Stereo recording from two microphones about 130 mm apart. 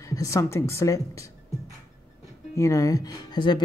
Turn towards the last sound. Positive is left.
turn(degrees=35)  # may be behind; listen again after turning